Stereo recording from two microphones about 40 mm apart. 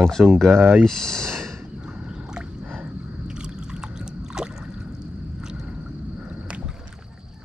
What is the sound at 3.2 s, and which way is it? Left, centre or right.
Rowboat, right.